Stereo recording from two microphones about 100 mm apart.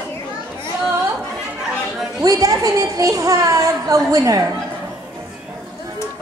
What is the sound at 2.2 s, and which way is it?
A woman's voice, 35° right (ahead or behind).